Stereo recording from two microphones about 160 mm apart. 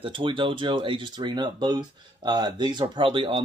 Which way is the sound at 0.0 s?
30° right (ahead or behind).